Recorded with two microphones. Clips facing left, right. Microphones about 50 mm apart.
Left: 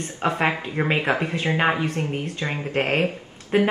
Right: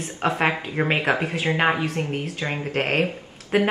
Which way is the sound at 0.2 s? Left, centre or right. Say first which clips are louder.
Even; centre.